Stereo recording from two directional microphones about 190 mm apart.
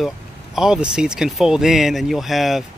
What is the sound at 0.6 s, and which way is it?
Speech, 5° right (ahead or behind).